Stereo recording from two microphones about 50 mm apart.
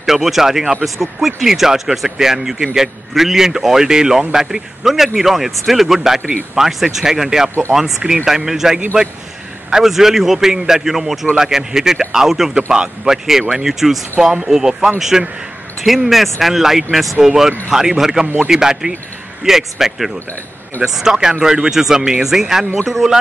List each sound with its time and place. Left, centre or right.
0.0 s speech: centre
12.5 s speech: centre